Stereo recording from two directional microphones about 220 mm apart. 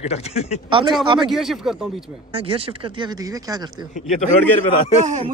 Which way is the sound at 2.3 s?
25° right (ahead or behind).